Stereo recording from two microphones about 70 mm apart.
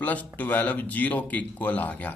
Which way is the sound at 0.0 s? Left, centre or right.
Left.